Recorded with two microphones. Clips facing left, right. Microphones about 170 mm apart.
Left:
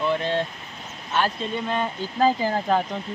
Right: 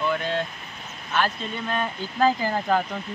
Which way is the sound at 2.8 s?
20° left (ahead or behind).